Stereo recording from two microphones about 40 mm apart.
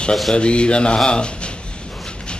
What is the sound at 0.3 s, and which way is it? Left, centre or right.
Music, left.